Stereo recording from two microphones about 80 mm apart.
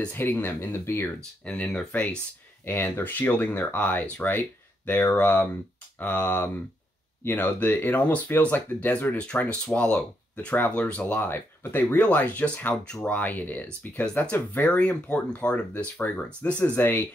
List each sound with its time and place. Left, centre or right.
0.1 s speech: left
1.4 s speech: centre
2.6 s speech: left